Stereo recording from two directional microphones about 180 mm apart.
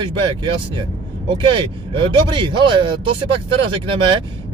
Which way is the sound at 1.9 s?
30° right (ahead or behind).